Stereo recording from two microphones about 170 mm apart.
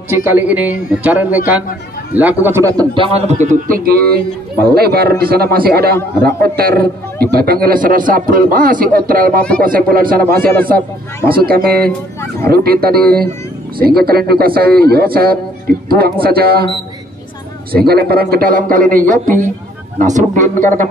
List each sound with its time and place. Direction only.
0.1 s speech: 15° right (ahead or behind)
2.4 s a man's voice: 15° right (ahead or behind); by 16.6 s 65° right (ahead or behind)
17.7 s a man's voice: 65° right (ahead or behind); by 20.9 s 50° right (ahead or behind)